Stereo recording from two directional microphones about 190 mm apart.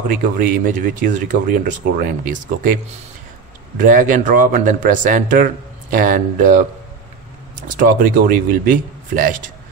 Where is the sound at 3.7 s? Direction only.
45° right (ahead or behind).